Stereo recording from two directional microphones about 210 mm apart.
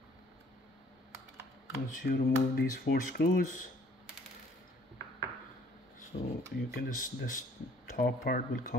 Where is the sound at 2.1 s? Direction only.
55° left (ahead or behind).